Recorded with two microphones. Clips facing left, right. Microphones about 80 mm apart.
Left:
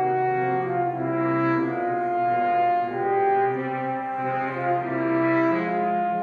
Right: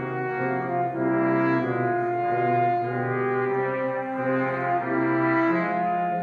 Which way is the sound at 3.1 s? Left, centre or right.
Right.